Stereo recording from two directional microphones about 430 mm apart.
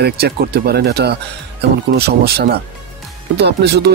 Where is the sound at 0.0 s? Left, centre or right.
Right.